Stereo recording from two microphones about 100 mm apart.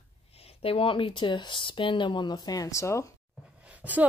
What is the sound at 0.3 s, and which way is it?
Speech, 85° left.